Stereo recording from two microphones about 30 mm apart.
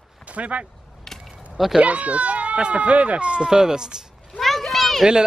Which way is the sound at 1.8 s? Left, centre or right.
Right.